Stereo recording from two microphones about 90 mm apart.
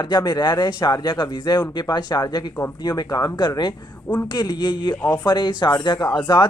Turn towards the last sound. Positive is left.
turn(degrees=55)  # may be behind; listen again after turning